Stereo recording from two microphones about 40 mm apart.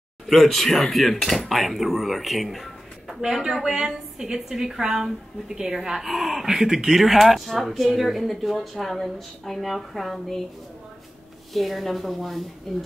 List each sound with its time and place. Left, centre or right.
0.3 s speech: centre
3.2 s a woman's voice: centre
11.5 s speech: centre